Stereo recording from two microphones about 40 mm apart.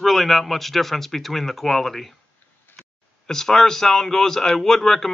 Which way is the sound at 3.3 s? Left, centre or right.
Centre.